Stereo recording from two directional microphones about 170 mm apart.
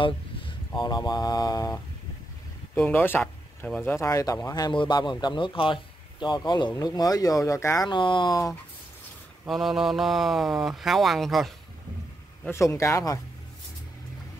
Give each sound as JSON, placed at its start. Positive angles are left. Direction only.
{"t": 0.0, "sound": "speech", "side_deg": 30}
{"t": 2.7, "sound": "speech", "side_deg": 10}
{"t": 9.5, "sound": "speech", "side_deg": 0}
{"t": 12.4, "sound": "speech", "side_deg": 15}